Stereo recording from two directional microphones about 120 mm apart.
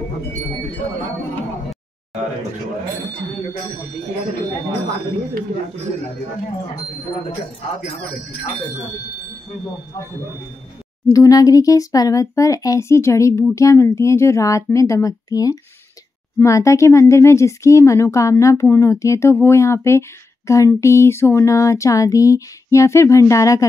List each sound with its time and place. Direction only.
11.1 s speech: 30° left (ahead or behind)